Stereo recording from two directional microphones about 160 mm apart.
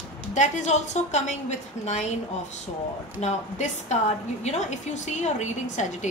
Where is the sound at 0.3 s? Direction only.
50° left (ahead or behind).